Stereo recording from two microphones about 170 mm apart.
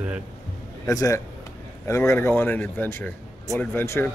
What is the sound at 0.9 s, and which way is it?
Speech, 20° left (ahead or behind).